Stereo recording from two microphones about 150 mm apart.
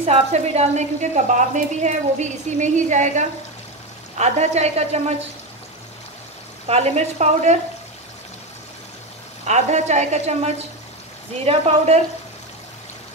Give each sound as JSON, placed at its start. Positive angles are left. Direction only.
{"t": 0.0, "sound": "a woman's voice", "side_deg": -45}
{"t": 6.7, "sound": "a woman's voice", "side_deg": -45}
{"t": 9.4, "sound": "a woman's voice", "side_deg": -50}